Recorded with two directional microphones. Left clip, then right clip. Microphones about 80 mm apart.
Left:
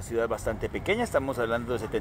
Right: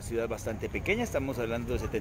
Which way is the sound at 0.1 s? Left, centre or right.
Centre.